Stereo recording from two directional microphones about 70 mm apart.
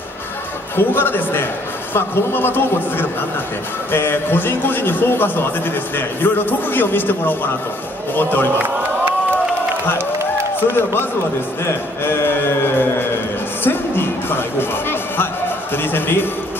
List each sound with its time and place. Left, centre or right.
0.7 s a man's voice: left
8.5 s crowd: right
10.7 s a man's voice: left
11.6 s a sound: left
13.7 s music: left
15.7 s a man's voice: left